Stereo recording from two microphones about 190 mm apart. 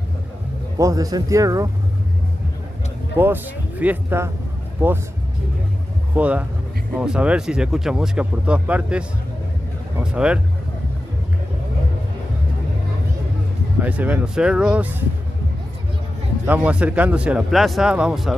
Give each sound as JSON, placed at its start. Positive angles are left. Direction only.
{"t": 0.7, "sound": "speech", "side_deg": -20}
{"t": 3.2, "sound": "speech", "side_deg": -10}
{"t": 6.1, "sound": "speech", "side_deg": -5}
{"t": 10.1, "sound": "speech", "side_deg": -5}
{"t": 13.7, "sound": "speech", "side_deg": -10}
{"t": 16.4, "sound": "speech", "side_deg": -10}